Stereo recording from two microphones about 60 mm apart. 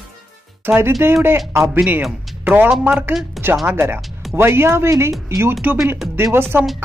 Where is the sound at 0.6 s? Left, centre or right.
Right.